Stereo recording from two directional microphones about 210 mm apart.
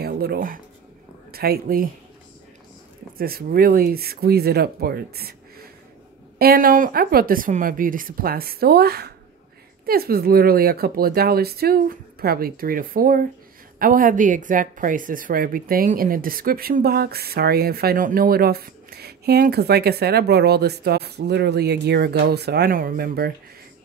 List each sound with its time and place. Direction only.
0.0 s speech: 50° right (ahead or behind)
3.2 s speech: 45° right (ahead or behind)